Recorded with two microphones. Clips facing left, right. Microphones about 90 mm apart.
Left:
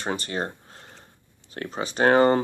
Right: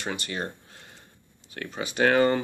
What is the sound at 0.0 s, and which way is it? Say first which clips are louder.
Speech: left 4 dB; 35° left (ahead or behind).